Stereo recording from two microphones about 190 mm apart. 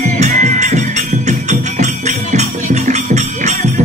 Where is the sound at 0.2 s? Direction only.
40° right (ahead or behind).